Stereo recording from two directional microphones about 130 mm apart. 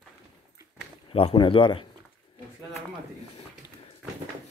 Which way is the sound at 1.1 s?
45° left (ahead or behind).